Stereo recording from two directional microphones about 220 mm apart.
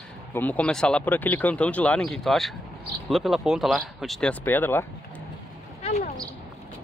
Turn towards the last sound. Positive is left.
turn(degrees=30)  # may be behind; listen again after turning